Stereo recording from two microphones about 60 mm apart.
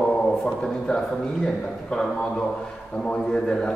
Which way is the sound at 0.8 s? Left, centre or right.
Centre.